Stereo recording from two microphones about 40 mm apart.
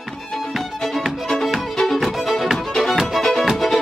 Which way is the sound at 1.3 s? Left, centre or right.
Centre.